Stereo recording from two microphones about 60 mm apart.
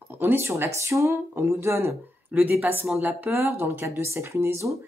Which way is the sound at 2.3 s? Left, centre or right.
Right.